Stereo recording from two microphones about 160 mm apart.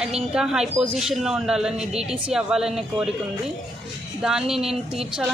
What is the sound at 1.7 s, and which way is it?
Speech, 40° right (ahead or behind).